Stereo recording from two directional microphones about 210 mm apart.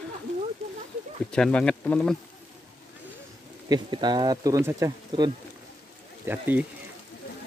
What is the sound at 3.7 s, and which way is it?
Speech, 20° right (ahead or behind).